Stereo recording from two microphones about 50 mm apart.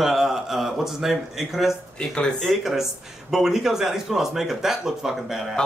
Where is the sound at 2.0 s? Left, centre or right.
Centre.